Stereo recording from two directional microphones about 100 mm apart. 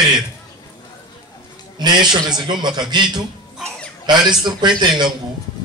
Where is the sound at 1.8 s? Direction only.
45° right (ahead or behind).